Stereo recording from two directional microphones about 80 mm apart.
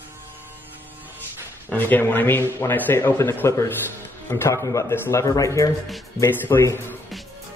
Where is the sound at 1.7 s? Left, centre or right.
Left.